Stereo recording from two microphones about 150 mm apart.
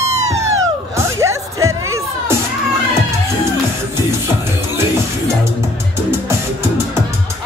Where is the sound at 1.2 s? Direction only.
20° right (ahead or behind).